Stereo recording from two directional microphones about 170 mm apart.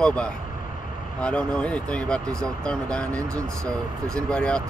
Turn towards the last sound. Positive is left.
turn(degrees=5)  # may be behind; listen again after turning